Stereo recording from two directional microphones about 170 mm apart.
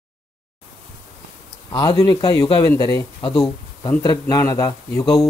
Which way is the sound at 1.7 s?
25° left (ahead or behind).